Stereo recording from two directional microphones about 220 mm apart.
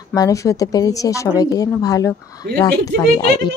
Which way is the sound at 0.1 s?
15° left (ahead or behind).